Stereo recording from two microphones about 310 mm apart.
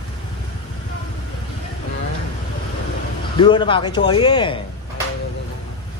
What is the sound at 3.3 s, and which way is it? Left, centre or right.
Speech, centre.